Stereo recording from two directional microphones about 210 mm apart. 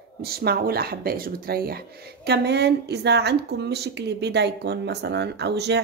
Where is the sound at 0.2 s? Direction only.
50° right (ahead or behind).